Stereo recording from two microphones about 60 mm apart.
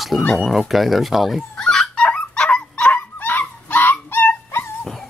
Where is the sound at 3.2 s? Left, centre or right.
Left.